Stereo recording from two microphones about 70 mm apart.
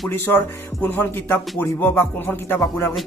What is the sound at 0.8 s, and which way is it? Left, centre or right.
Speech, left.